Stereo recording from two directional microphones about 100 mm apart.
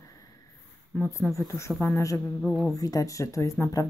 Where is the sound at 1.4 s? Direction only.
30° left (ahead or behind).